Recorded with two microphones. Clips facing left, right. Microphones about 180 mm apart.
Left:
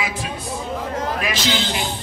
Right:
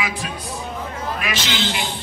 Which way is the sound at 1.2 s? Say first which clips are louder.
Left 2 dB; 35° left (ahead or behind).